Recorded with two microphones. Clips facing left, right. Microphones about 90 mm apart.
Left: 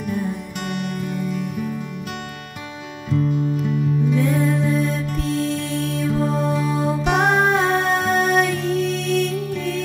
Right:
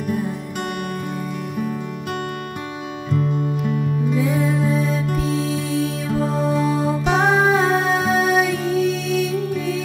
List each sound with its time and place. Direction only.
0.1 s music: centre (ahead or behind)
0.7 s music: 45° right (ahead or behind)
4.1 s music: centre (ahead or behind)